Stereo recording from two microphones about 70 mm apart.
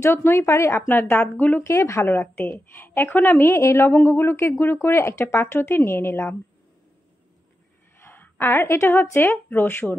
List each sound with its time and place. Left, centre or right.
0.0 s a woman's voice: left
1.8 s a woman's voice: left
2.0 s a woman's voice: left
8.0 s a sound: left
8.4 s a woman's voice: left